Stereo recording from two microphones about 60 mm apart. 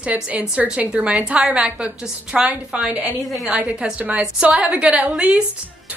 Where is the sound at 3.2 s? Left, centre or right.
Centre.